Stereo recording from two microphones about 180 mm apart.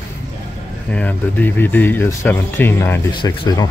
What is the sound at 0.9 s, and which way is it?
Speech, 5° left (ahead or behind).